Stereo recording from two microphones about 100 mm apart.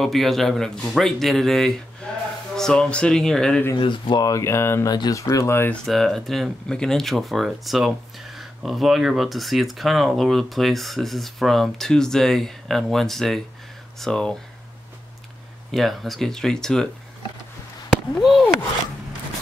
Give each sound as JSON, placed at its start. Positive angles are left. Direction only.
{"t": 0.0, "sound": "speech", "side_deg": 0}
{"t": 2.0, "sound": "a sound", "side_deg": 10}
{"t": 2.5, "sound": "speech", "side_deg": 5}
{"t": 3.8, "sound": "speech", "side_deg": 45}
{"t": 4.3, "sound": "speech", "side_deg": 30}
{"t": 4.8, "sound": "speech", "side_deg": 45}
{"t": 5.1, "sound": "speech", "side_deg": 30}
{"t": 5.9, "sound": "speech", "side_deg": 0}
{"t": 15.7, "sound": "speech", "side_deg": 0}
{"t": 18.1, "sound": "speech", "side_deg": 0}